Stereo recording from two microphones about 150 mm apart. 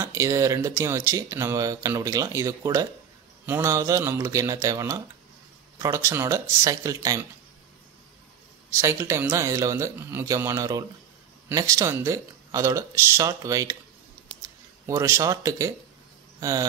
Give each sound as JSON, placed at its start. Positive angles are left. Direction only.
{"t": 0.0, "sound": "speech", "side_deg": -20}
{"t": 8.6, "sound": "speech", "side_deg": -20}
{"t": 14.9, "sound": "speech", "side_deg": -20}